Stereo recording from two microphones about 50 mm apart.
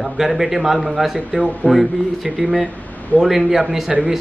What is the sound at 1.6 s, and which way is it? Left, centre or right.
Speech, left.